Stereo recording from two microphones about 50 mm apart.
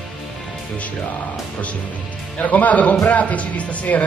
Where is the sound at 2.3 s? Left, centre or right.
Left.